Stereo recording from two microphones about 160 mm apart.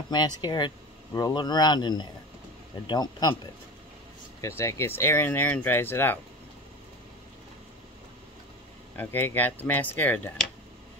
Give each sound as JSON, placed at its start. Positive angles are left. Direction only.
{"t": 0.1, "sound": "speech", "side_deg": 25}
{"t": 4.4, "sound": "speech", "side_deg": 15}
{"t": 8.9, "sound": "speech", "side_deg": 10}